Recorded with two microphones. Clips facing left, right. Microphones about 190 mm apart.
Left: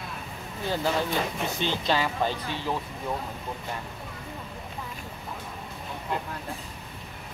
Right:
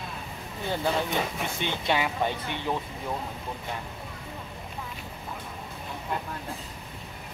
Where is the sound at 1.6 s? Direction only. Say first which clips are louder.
Left 1 dB; 15° right (ahead or behind).